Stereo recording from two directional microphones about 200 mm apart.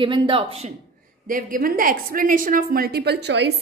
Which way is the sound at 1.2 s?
45° right (ahead or behind).